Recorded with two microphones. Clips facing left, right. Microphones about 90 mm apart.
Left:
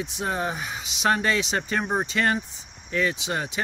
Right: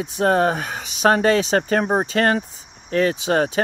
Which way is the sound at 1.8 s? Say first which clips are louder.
Right 6 dB; 35° right (ahead or behind).